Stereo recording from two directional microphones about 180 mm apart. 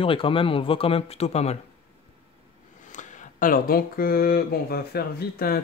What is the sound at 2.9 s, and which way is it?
Speech, 45° left (ahead or behind).